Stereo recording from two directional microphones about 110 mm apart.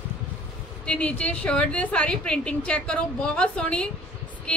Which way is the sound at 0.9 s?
10° left (ahead or behind).